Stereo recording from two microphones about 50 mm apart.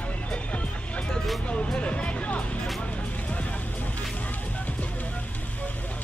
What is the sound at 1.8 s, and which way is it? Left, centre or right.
Music, left.